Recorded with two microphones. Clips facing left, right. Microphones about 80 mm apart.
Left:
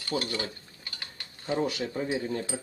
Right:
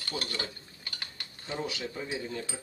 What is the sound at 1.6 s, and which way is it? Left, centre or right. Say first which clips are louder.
Speech: left 6 dB; left.